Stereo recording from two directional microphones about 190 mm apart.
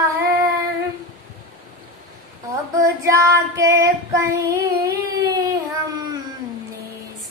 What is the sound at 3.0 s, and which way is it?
Child singing, 15° right (ahead or behind).